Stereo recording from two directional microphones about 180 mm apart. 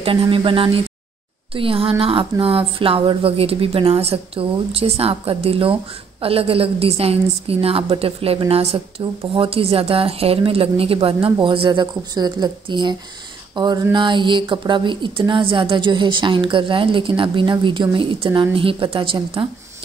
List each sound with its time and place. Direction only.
0.0 s speech: 30° right (ahead or behind)
13.9 s speech: 25° right (ahead or behind)